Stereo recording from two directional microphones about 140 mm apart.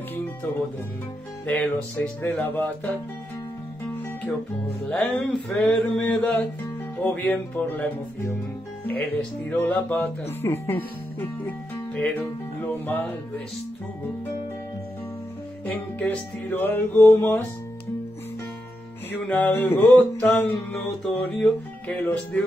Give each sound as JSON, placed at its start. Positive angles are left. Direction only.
{"t": 1.4, "sound": "music", "side_deg": 10}
{"t": 4.8, "sound": "music", "side_deg": 10}
{"t": 11.1, "sound": "speech", "side_deg": 10}
{"t": 12.7, "sound": "music", "side_deg": 15}
{"t": 15.6, "sound": "music", "side_deg": 10}
{"t": 19.2, "sound": "music", "side_deg": 10}